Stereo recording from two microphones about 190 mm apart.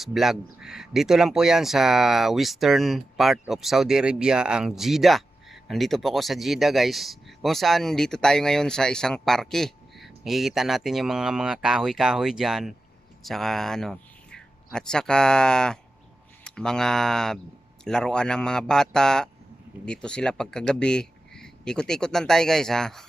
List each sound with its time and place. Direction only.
0.0 s speech: centre (ahead or behind)